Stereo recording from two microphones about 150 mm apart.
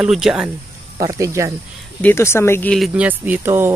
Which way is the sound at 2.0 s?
15° left (ahead or behind).